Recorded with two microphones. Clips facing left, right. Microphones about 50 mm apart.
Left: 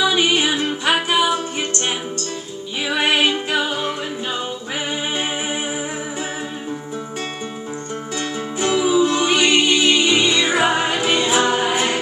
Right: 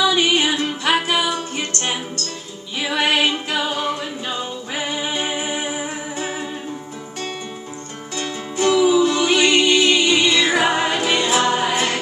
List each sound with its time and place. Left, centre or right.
0.2 s music: left
8.2 s music: left